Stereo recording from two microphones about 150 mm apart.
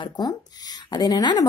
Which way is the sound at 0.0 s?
30° left (ahead or behind).